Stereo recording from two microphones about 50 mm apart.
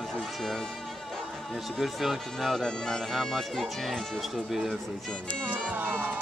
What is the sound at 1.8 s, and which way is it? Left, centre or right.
Speech, centre.